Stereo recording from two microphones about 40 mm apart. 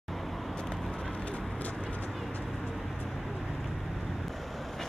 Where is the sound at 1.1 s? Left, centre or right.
Left.